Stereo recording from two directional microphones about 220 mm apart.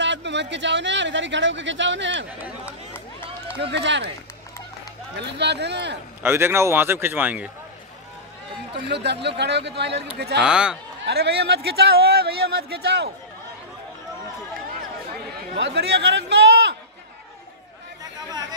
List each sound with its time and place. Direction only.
0.0 s speech: 55° right (ahead or behind)
3.5 s speech: 55° right (ahead or behind)
5.2 s speech: 50° right (ahead or behind)
6.2 s a man's voice: 10° right (ahead or behind)
8.7 s speech: 50° right (ahead or behind)
10.4 s speech: 5° right (ahead or behind)
11.1 s speech: 50° right (ahead or behind)
15.5 s a man's voice: 50° right (ahead or behind)